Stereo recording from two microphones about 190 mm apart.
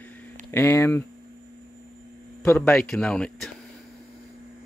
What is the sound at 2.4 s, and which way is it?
Speech, 10° left (ahead or behind).